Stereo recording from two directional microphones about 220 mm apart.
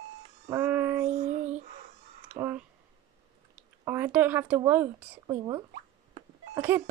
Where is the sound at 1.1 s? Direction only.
30° right (ahead or behind).